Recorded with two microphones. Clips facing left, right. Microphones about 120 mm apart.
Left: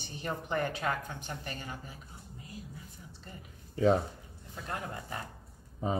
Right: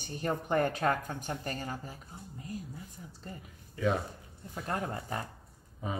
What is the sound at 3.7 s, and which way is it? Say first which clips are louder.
Speech: left 5 dB; 35° left (ahead or behind).